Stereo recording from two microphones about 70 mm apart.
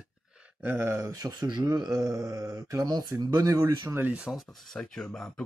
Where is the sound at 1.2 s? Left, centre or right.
Right.